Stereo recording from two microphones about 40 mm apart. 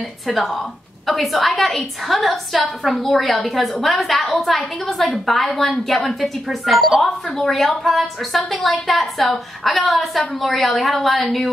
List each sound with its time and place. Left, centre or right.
1.0 s a woman's voice: centre